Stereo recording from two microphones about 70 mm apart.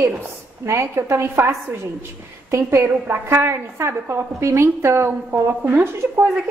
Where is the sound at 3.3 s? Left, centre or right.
Right.